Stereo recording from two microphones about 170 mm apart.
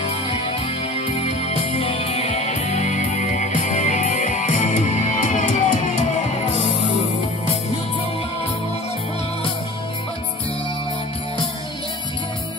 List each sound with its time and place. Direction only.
0.0 s music: 35° left (ahead or behind)